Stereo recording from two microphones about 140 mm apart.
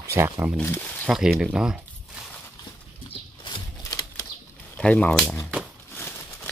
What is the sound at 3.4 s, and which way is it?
Shuffling cards, 30° left (ahead or behind).